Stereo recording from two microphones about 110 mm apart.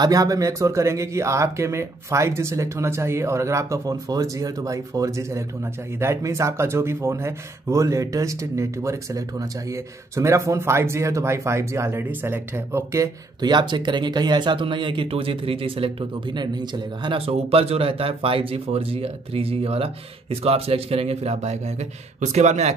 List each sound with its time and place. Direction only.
0.0 s speech: 35° right (ahead or behind)
13.4 s speech: 40° right (ahead or behind); by 22.8 s 90° right